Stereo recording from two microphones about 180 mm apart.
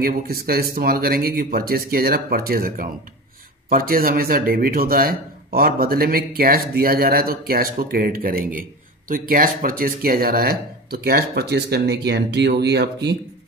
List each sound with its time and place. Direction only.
0.0 s a man's voice: 55° right (ahead or behind)